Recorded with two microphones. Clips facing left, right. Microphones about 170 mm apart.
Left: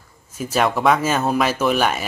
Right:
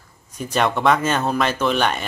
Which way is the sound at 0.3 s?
5° left (ahead or behind).